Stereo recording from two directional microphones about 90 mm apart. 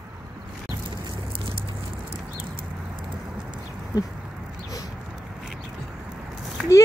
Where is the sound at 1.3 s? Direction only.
90° right.